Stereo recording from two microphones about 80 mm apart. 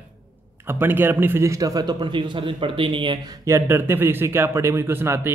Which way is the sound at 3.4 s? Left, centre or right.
Right.